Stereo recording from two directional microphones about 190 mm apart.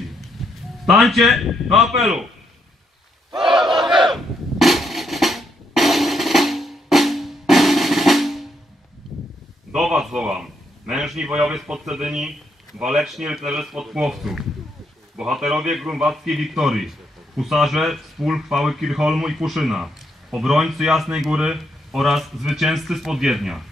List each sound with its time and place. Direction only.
0.4 s music: centre (ahead or behind)
0.8 s speech: centre (ahead or behind)
3.3 s battle cry: centre (ahead or behind)
9.0 s a sound: centre (ahead or behind)
9.7 s speech: 5° right (ahead or behind)